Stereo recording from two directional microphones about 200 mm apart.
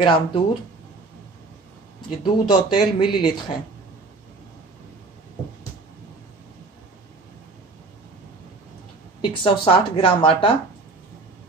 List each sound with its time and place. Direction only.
0.0 s a woman's voice: 25° left (ahead or behind)
2.0 s a woman's voice: 25° left (ahead or behind)
9.2 s a woman's voice: 25° left (ahead or behind)